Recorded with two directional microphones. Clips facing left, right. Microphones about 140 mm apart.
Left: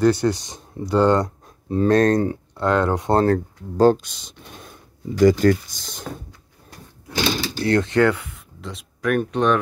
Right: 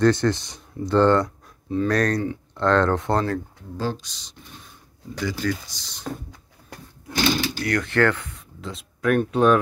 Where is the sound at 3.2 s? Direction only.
45° left (ahead or behind).